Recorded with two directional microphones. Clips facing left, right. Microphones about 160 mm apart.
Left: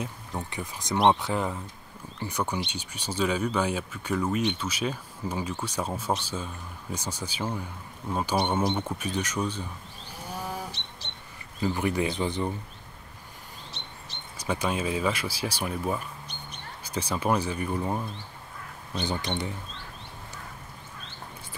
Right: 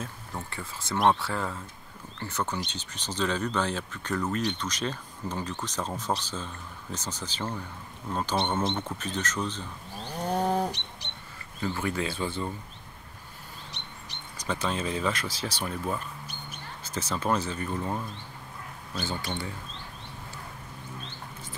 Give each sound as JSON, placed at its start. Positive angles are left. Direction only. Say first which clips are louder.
{"t": 0.0, "sound": "speech", "louder": "left 3 dB", "side_deg": 15}
{"t": 10.2, "sound": "livestock", "louder": "right 9 dB", "side_deg": -60}
{"t": 11.6, "sound": "speech", "louder": "left 3 dB", "side_deg": 15}
{"t": 13.7, "sound": "chirp", "louder": "left 1 dB", "side_deg": -15}
{"t": 14.4, "sound": "speech", "louder": "left 2 dB", "side_deg": 10}